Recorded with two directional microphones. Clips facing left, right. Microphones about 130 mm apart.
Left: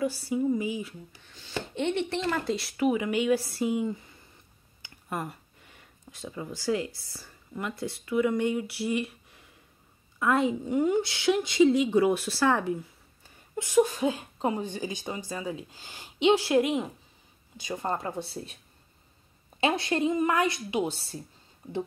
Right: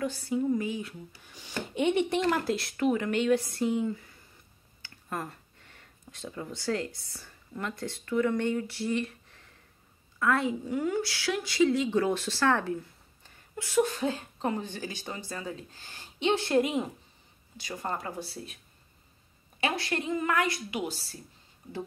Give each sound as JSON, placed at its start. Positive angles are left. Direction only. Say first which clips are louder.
{"t": 0.0, "sound": "a woman's voice", "louder": "left 2 dB", "side_deg": 10}
{"t": 1.2, "sound": "a woman's voice", "louder": "left 2 dB", "side_deg": -10}
{"t": 17.6, "sound": "speech", "louder": "left 4 dB", "side_deg": 20}
{"t": 19.6, "sound": "speech", "louder": "left 5 dB", "side_deg": 20}